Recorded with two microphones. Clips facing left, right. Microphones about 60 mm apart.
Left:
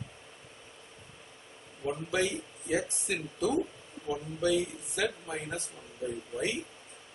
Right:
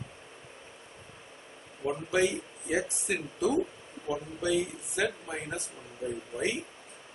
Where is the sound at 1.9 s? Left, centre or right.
Centre.